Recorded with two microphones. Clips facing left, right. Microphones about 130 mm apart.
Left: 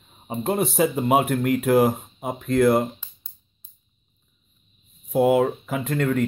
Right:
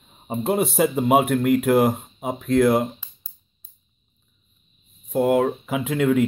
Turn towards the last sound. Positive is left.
turn(degrees=0)  # may be behind; listen again after turning